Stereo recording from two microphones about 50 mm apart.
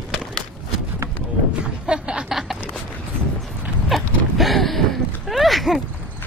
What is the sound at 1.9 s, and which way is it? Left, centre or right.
Snicker, centre.